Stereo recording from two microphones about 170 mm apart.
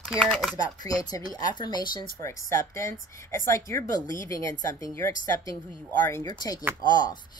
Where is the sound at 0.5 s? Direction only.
20° left (ahead or behind).